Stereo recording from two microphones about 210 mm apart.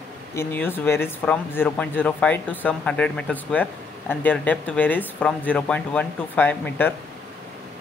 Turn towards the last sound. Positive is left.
turn(degrees=10)  # may be behind; listen again after turning